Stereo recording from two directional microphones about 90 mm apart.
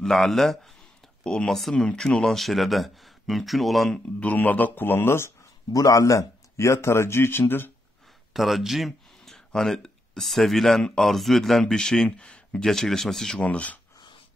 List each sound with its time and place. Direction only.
0.0 s speech: 5° left (ahead or behind)
4.2 s a man's voice: 15° left (ahead or behind)
5.7 s speech: 40° left (ahead or behind); by 7.7 s 25° left (ahead or behind)
8.3 s speech: centre (ahead or behind)
13.4 s speech: 15° left (ahead or behind)